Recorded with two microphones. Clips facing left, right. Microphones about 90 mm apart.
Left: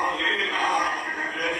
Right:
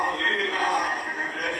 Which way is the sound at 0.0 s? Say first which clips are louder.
Even; 30° right (ahead or behind).